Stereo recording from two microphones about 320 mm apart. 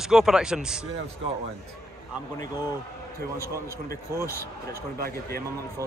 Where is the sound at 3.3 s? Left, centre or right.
Centre.